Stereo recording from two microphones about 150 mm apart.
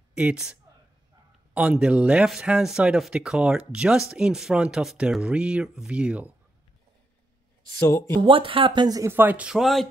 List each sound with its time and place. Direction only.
0.1 s speech: 10° right (ahead or behind)
8.3 s speech: 35° right (ahead or behind); by 9.8 s centre (ahead or behind)